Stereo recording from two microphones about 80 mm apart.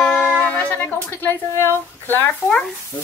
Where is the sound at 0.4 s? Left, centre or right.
Left.